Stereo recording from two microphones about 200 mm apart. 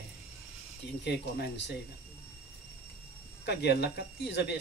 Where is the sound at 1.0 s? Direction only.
55° left (ahead or behind).